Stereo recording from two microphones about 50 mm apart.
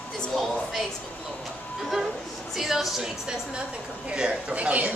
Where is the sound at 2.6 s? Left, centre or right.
Centre.